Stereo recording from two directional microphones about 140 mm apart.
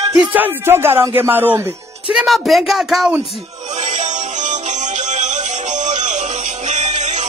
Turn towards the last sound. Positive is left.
turn(degrees=-55)  # may be behind; listen again after turning